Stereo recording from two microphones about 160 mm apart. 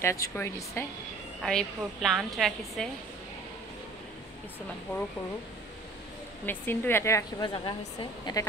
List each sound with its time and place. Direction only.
0.0 s a woman's voice: 20° left (ahead or behind)
1.4 s a woman's voice: 5° left (ahead or behind)
6.4 s a woman's voice: 10° left (ahead or behind)
7.4 s a woman's voice: 30° left (ahead or behind)